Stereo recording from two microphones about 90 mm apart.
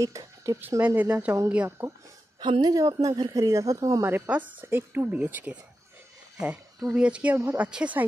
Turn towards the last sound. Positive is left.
turn(degrees=-10)  # may be behind; listen again after turning